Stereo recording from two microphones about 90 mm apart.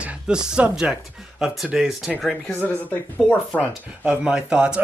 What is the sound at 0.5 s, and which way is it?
Speech, 10° right (ahead or behind).